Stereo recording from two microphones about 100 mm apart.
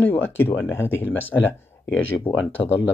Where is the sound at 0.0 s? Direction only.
20° left (ahead or behind).